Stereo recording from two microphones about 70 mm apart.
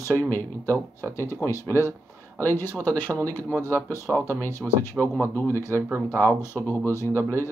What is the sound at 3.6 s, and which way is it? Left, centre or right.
Speech, left.